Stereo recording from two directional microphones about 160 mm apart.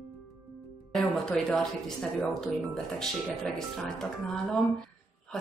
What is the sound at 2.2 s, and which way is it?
Speech, 5° left (ahead or behind).